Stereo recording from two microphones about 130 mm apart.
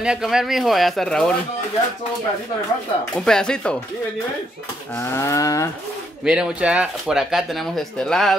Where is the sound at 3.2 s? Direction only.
5° left (ahead or behind).